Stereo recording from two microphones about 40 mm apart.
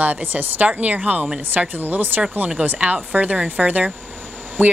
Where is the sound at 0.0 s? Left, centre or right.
Right.